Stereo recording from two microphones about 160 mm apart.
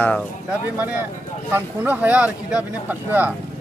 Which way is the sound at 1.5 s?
10° right (ahead or behind).